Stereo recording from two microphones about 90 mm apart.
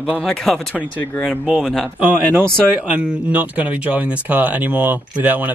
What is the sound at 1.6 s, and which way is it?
Speech, 5° left (ahead or behind).